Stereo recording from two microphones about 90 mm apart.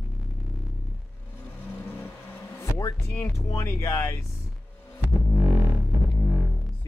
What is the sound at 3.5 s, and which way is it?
Speech, 30° left (ahead or behind).